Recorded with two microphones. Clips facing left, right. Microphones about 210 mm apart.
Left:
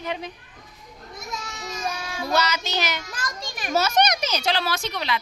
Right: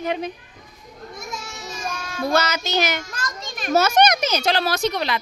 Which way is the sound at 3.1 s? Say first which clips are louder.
Right 2 dB; 15° left (ahead or behind).